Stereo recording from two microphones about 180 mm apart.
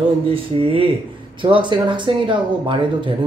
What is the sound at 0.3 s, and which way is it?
Speech, 30° right (ahead or behind).